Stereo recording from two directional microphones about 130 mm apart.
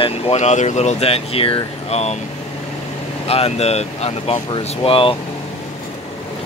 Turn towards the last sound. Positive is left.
turn(degrees=45)  # may be behind; listen again after turning